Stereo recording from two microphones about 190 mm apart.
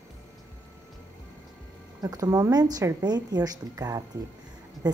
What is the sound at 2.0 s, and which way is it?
A woman's voice, 20° right (ahead or behind).